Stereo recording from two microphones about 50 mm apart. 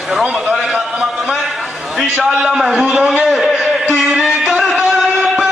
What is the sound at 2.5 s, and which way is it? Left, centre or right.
Speech, centre.